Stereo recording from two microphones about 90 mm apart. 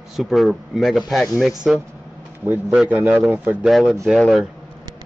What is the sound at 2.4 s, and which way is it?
Speech, 15° right (ahead or behind).